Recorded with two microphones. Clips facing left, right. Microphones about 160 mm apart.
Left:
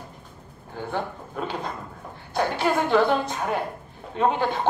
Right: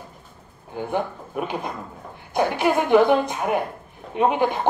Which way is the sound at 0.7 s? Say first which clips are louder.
Right 4 dB; 15° right (ahead or behind).